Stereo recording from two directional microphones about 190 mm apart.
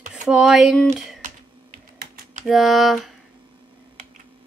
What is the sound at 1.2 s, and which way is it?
Typing, 45° right (ahead or behind).